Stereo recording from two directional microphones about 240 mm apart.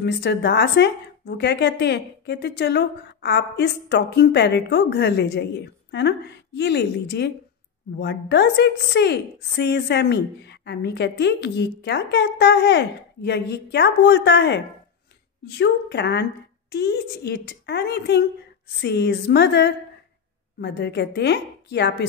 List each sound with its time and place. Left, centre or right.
0.0 s a woman's voice: left